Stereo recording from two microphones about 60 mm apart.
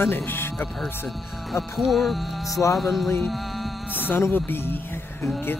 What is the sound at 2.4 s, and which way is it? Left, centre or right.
Music, left.